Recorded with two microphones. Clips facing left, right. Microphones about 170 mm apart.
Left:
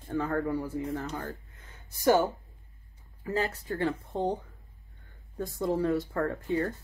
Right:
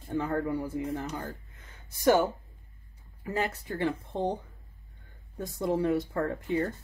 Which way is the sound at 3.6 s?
20° right (ahead or behind).